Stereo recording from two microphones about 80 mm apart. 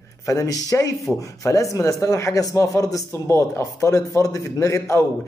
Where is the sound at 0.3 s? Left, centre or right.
Left.